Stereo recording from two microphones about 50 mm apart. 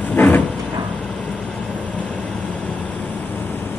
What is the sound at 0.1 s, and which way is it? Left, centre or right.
Vehicle, left.